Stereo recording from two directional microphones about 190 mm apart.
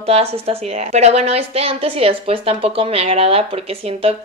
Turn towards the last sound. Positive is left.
turn(degrees=-30)  # may be behind; listen again after turning